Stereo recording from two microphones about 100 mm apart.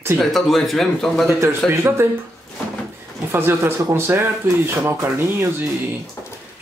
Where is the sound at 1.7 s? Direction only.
30° right (ahead or behind).